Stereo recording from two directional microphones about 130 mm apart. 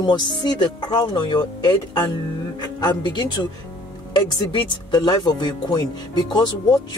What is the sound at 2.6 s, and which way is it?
Speech, 35° left (ahead or behind).